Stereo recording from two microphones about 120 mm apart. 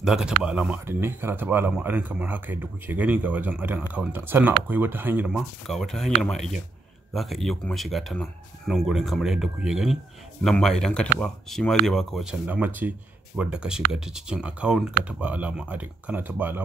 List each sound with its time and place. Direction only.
0.0 s speech: 5° right (ahead or behind)
5.7 s speech: centre (ahead or behind)
12.4 s speech: 15° right (ahead or behind)